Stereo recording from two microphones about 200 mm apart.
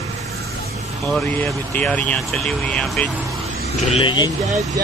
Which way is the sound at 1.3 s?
10° left (ahead or behind).